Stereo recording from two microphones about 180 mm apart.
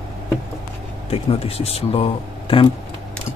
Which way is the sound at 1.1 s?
35° left (ahead or behind).